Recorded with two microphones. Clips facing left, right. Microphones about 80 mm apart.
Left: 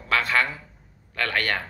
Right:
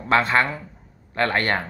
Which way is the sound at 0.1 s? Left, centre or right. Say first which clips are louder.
Right 4 dB; right.